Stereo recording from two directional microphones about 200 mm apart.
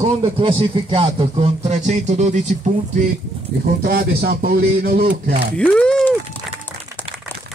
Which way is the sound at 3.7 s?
50° right (ahead or behind).